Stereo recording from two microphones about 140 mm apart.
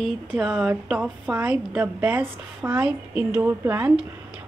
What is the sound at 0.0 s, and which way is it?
A woman's voice, 5° right (ahead or behind).